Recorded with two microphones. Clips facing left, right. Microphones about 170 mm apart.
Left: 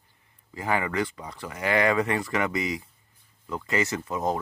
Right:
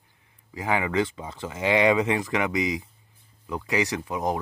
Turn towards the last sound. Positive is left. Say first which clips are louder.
# even
turn(degrees=-15)  # may be behind; listen again after turning